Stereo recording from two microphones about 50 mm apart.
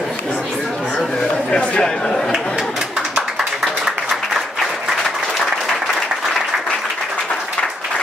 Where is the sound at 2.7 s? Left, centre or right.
Centre.